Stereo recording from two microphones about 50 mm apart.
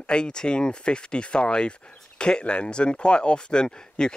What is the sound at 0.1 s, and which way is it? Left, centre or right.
Speech, centre.